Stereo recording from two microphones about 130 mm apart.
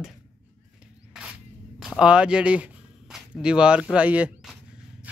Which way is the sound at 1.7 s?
5° right (ahead or behind).